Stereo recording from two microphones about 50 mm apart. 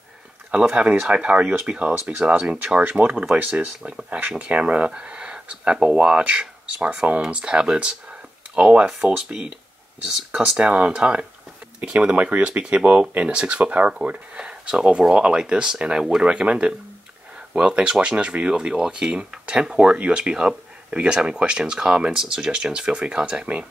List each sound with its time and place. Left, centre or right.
0.5 s speech: right
1.4 s speech: right
1.7 s speech: right
10.6 s speech: right
12.2 s speech: right